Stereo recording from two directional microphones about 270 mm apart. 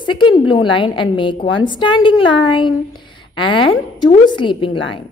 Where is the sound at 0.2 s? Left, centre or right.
Centre.